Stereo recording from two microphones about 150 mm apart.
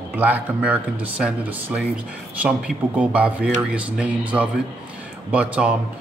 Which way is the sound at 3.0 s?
10° right (ahead or behind).